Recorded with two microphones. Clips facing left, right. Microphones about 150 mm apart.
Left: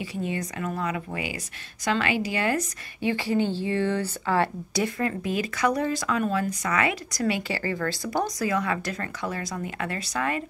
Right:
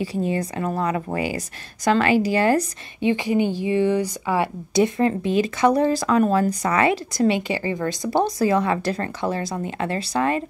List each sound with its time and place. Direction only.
0.0 s speech: 35° right (ahead or behind)
3.0 s speech: 20° right (ahead or behind)